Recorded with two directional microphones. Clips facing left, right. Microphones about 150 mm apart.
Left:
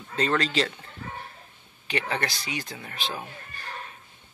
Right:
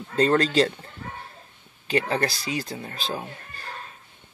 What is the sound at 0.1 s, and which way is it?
Speech, 40° right (ahead or behind).